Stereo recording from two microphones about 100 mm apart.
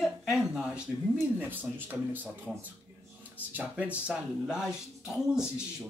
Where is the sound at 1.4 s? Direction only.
20° right (ahead or behind).